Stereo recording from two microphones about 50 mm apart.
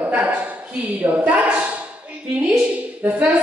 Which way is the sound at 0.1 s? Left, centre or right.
Right.